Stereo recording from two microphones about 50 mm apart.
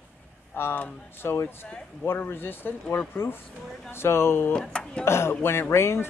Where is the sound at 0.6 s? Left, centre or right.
Left.